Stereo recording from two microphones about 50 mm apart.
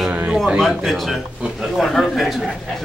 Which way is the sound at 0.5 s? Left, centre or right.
Centre.